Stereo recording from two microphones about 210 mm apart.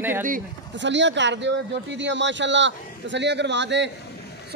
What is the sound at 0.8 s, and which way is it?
A man's voice, 60° right (ahead or behind).